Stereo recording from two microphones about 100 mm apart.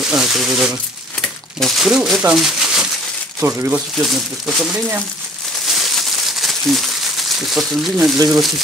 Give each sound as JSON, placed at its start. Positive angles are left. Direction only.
{"t": 0.0, "sound": "speech", "side_deg": -5}
{"t": 2.3, "sound": "a sound", "side_deg": -5}
{"t": 3.3, "sound": "speech", "side_deg": -25}
{"t": 4.0, "sound": "speech", "side_deg": 0}
{"t": 5.7, "sound": "a sound", "side_deg": 0}
{"t": 7.4, "sound": "speech", "side_deg": 0}